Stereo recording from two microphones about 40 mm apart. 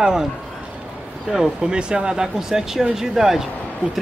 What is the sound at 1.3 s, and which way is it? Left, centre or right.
Speech, centre.